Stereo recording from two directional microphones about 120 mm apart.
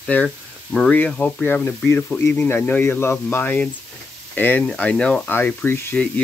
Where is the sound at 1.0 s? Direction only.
10° left (ahead or behind).